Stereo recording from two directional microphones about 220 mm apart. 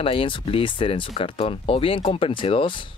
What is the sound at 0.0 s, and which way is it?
Speech, 25° left (ahead or behind).